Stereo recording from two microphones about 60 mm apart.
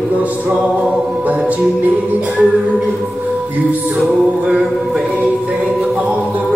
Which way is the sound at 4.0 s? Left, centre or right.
Centre.